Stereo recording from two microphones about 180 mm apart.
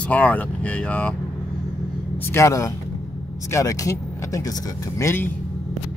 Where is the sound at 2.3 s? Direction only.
15° left (ahead or behind).